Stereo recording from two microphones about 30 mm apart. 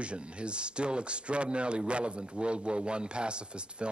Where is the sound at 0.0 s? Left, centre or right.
Right.